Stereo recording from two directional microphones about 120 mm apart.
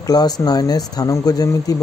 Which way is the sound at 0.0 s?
35° left (ahead or behind).